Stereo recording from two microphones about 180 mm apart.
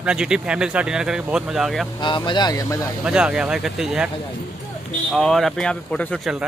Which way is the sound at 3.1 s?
5° right (ahead or behind).